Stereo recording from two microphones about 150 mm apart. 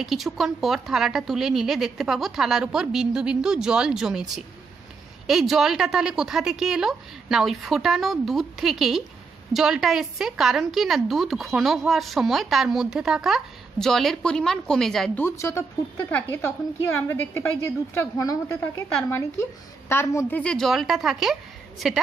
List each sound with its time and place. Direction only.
0.0 s a woman's voice: centre (ahead or behind)